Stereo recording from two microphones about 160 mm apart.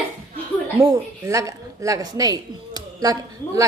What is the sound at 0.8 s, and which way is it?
A woman's voice, 20° right (ahead or behind).